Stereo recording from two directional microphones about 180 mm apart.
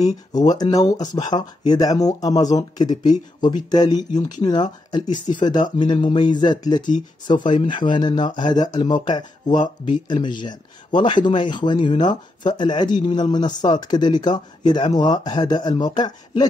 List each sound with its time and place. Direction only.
0.0 s speech: 20° left (ahead or behind)
9.5 s speech: 45° left (ahead or behind)
10.0 s speech: 25° left (ahead or behind)